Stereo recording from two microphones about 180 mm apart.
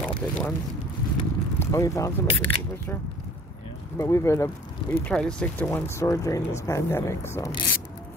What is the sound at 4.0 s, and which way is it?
Speech, 15° left (ahead or behind).